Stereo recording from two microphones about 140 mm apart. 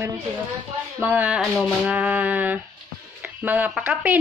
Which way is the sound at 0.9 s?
10° right (ahead or behind).